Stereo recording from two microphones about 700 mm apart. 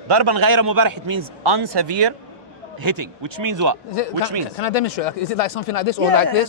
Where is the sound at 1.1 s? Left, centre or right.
Right.